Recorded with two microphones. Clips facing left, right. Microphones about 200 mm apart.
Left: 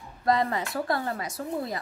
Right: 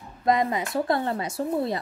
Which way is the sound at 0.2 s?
20° right (ahead or behind).